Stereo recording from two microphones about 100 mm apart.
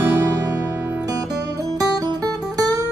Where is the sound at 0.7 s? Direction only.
20° right (ahead or behind).